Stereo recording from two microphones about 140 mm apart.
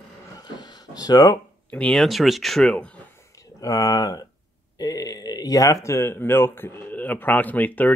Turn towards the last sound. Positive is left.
turn(degrees=10)  # may be behind; listen again after turning